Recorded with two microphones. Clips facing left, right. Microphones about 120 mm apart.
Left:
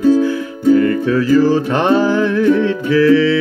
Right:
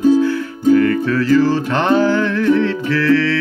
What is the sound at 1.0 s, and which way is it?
Music, 15° left (ahead or behind).